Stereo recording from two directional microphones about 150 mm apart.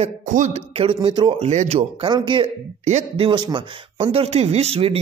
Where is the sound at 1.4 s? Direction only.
45° right (ahead or behind).